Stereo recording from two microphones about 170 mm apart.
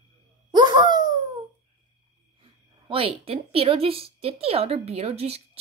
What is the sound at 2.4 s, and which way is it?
Speech, 35° right (ahead or behind).